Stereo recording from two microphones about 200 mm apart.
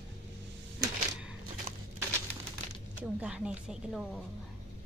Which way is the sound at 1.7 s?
35° right (ahead or behind).